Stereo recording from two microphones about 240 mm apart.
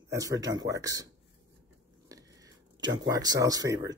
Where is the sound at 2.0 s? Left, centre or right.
Centre.